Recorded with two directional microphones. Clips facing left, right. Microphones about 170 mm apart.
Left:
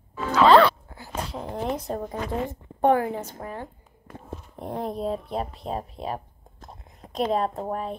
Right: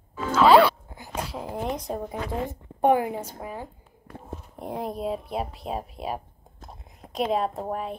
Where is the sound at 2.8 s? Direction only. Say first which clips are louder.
Even; 15° right (ahead or behind).